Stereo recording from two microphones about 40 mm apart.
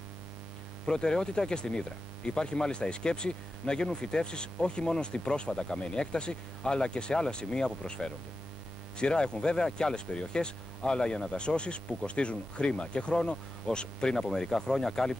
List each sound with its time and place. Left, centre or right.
0.8 s speech: centre